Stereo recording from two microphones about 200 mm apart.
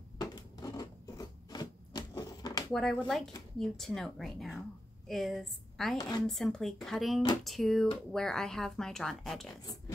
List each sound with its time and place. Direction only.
0.2 s a sound: 20° left (ahead or behind)
2.7 s a woman's voice: 5° left (ahead or behind)
5.9 s speech: 20° left (ahead or behind)
6.2 s speech: centre (ahead or behind)